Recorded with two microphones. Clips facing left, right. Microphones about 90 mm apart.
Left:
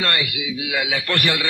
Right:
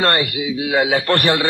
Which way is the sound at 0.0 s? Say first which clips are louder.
Right 6 dB; 40° right (ahead or behind).